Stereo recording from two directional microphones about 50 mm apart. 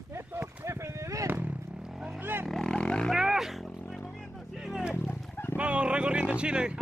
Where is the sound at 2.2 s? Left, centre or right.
Right.